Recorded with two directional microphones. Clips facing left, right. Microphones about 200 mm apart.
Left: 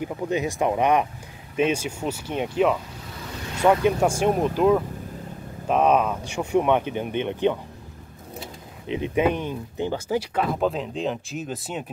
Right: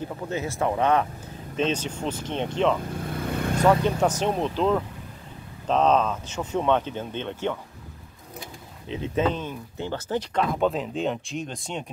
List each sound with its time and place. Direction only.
0.0 s speech: 15° left (ahead or behind)
2.9 s vehicle: 55° right (ahead or behind)
3.5 s speech: 10° left (ahead or behind)
8.8 s speech: 15° left (ahead or behind)